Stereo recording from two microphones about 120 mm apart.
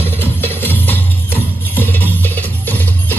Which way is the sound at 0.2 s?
20° left (ahead or behind).